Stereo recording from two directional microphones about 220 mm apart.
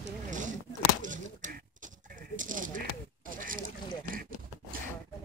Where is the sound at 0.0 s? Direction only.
35° right (ahead or behind).